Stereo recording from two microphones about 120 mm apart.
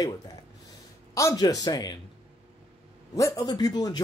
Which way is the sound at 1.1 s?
30° left (ahead or behind).